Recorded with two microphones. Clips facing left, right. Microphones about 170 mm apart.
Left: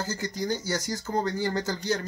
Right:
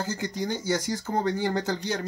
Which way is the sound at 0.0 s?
20° right (ahead or behind).